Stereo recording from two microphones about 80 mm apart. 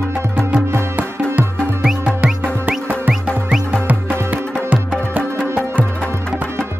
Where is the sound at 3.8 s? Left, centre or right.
Right.